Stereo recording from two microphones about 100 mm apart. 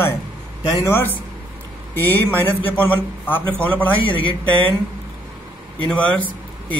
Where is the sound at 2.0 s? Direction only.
20° left (ahead or behind).